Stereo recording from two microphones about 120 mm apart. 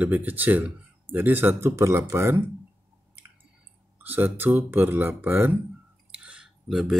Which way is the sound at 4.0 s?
15° right (ahead or behind).